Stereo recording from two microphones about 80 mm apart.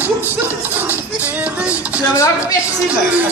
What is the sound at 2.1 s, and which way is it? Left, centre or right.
Speech, left.